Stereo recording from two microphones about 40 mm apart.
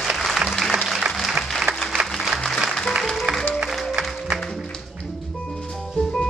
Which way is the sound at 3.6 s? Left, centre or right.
Right.